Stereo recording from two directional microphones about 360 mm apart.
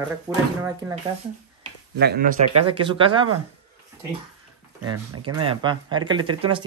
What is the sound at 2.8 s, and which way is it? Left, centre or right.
Speech, centre.